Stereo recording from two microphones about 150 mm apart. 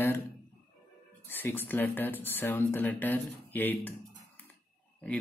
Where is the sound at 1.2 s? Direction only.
15° left (ahead or behind).